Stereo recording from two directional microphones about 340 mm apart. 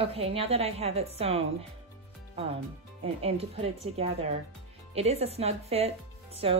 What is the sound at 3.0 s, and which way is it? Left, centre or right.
A woman's voice, centre.